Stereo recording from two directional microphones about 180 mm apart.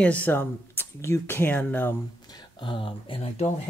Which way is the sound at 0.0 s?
10° left (ahead or behind).